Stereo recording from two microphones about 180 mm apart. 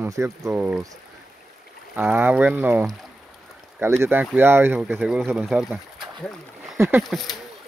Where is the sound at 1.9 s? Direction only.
10° right (ahead or behind).